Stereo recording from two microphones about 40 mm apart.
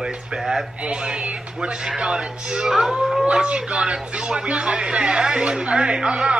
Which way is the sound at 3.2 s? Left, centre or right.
Right.